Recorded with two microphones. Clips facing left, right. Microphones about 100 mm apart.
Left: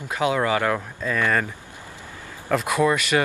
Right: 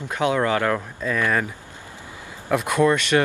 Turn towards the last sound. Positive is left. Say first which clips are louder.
# right 2 dB
turn(degrees=5)  # may be behind; listen again after turning